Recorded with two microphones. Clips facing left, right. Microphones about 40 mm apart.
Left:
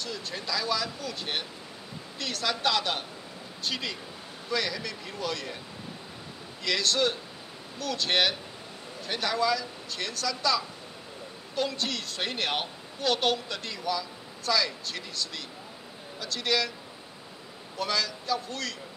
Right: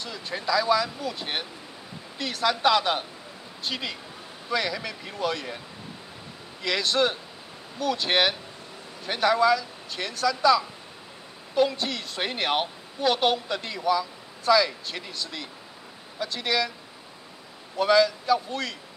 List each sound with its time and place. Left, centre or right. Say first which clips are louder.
0.0 s a woman's voice: right 4 dB; centre
6.6 s a woman's voice: right 3 dB; centre
17.7 s a woman's voice: right 10 dB; centre